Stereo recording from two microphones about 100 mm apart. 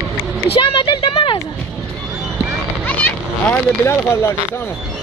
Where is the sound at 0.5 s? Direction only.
60° left (ahead or behind).